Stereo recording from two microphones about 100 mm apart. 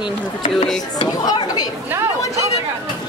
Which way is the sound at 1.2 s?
40° left (ahead or behind).